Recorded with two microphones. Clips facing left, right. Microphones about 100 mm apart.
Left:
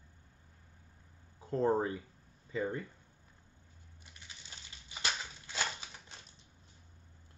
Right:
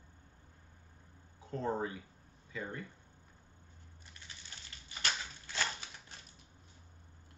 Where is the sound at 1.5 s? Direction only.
35° left (ahead or behind).